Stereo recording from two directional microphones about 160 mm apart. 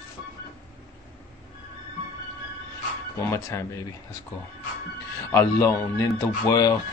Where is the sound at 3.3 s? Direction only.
15° left (ahead or behind).